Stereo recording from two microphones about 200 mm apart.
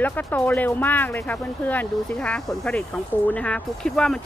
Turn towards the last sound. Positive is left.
turn(degrees=5)  # may be behind; listen again after turning